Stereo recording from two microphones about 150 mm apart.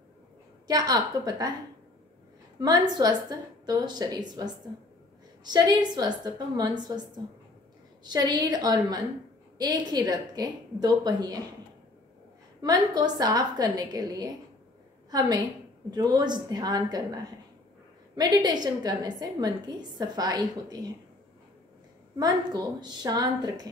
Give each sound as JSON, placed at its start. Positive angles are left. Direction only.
{"t": 0.7, "sound": "a woman's voice", "side_deg": -25}
{"t": 2.6, "sound": "a woman's voice", "side_deg": -25}
{"t": 5.4, "sound": "a woman's voice", "side_deg": -30}
{"t": 12.6, "sound": "a woman's voice", "side_deg": -25}
{"t": 22.2, "sound": "a woman's voice", "side_deg": -25}